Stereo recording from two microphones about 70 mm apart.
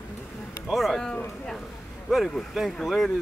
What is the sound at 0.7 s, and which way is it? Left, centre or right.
Speech, centre.